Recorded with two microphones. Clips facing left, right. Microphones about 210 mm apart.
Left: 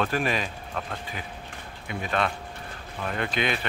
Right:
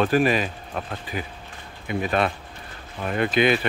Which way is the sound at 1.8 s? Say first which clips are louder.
Right 5 dB; 10° right (ahead or behind).